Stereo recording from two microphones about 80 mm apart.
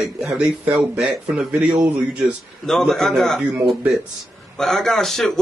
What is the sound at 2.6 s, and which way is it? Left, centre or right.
A man's voice, centre.